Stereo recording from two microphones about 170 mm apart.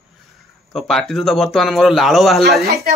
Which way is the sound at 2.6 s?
65° right (ahead or behind).